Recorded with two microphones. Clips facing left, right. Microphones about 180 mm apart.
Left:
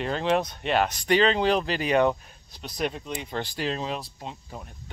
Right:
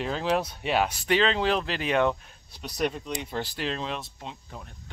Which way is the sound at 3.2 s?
5° right (ahead or behind).